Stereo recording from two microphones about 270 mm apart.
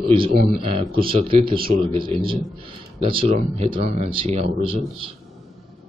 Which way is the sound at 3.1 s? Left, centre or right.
Right.